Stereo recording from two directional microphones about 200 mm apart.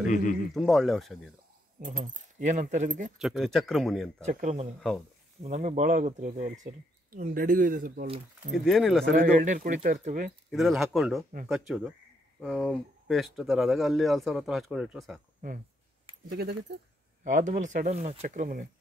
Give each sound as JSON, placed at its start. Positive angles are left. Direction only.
{"t": 0.1, "sound": "speech", "side_deg": 40}
{"t": 0.6, "sound": "speech", "side_deg": 0}
{"t": 1.8, "sound": "speech", "side_deg": -40}
{"t": 3.2, "sound": "speech", "side_deg": 0}
{"t": 4.3, "sound": "speech", "side_deg": -40}
{"t": 4.7, "sound": "speech", "side_deg": 5}
{"t": 5.4, "sound": "speech", "side_deg": -35}
{"t": 8.5, "sound": "speech", "side_deg": 0}
{"t": 9.1, "sound": "speech", "side_deg": -40}
{"t": 10.5, "sound": "speech", "side_deg": 0}
{"t": 16.3, "sound": "speech", "side_deg": -55}
{"t": 17.2, "sound": "speech", "side_deg": -40}